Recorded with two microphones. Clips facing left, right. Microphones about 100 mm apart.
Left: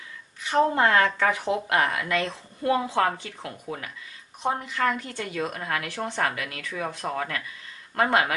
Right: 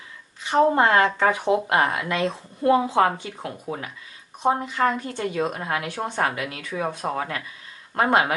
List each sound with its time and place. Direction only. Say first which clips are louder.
0.4 s speech: right 3 dB; 20° right (ahead or behind)